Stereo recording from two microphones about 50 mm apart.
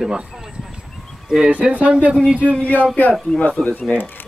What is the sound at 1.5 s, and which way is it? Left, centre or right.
Speech, right.